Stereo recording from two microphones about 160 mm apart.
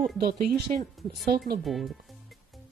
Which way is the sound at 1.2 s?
75° right (ahead or behind).